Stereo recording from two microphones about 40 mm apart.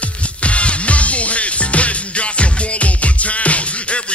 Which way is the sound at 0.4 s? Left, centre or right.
Left.